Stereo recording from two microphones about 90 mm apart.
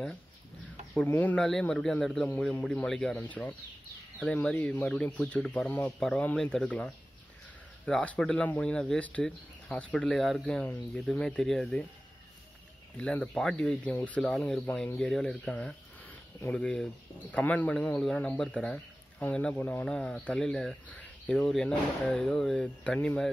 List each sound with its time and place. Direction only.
1.0 s speech: 20° left (ahead or behind)
4.6 s speech: 20° left (ahead or behind)
13.0 s speech: 10° left (ahead or behind)
16.5 s speech: 10° left (ahead or behind)